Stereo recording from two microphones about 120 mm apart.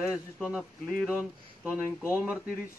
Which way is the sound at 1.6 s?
20° left (ahead or behind).